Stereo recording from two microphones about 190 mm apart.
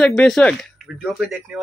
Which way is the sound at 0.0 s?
Centre (ahead or behind).